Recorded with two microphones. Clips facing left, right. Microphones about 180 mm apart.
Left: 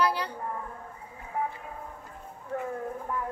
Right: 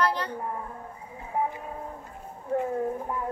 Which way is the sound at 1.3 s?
20° right (ahead or behind).